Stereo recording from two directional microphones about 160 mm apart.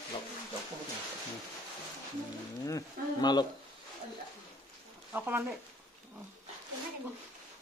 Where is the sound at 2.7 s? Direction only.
25° left (ahead or behind).